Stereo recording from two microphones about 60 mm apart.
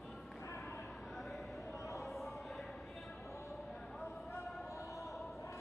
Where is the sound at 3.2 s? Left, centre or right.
Left.